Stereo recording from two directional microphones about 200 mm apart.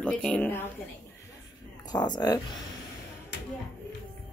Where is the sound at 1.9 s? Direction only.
20° left (ahead or behind).